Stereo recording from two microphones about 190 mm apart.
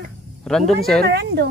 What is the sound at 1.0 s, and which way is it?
Speech, 60° right (ahead or behind).